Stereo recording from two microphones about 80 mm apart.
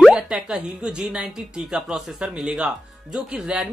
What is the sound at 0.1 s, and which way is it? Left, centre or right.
Speech, centre.